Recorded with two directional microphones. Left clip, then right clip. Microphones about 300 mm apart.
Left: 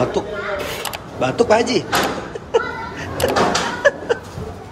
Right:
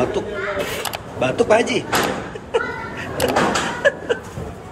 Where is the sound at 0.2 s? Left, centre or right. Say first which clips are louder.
Even; centre.